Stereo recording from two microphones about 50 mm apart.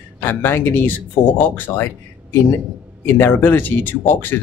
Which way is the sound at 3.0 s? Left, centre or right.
Left.